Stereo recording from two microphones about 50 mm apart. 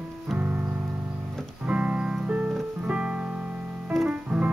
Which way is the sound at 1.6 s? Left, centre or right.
Right.